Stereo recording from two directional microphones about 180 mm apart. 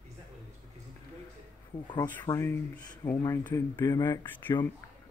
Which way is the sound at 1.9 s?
10° left (ahead or behind).